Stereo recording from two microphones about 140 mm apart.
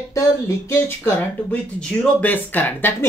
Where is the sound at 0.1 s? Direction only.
20° left (ahead or behind).